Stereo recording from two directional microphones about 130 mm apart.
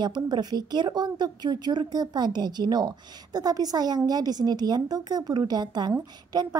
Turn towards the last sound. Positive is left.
turn(degrees=-30)  # may be behind; listen again after turning